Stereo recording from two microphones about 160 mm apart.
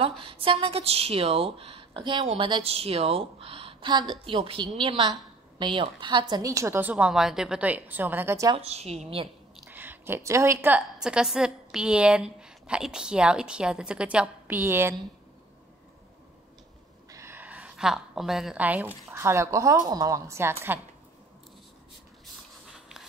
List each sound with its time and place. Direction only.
0.0 s a woman's voice: 35° right (ahead or behind); by 8.5 s 15° right (ahead or behind)
8.5 s a woman's voice: 40° right (ahead or behind)
9.7 s a woman's voice: 10° right (ahead or behind)
17.1 s a sound: 15° right (ahead or behind)
19.1 s a woman's voice: 15° right (ahead or behind)
22.2 s a sound: 5° right (ahead or behind)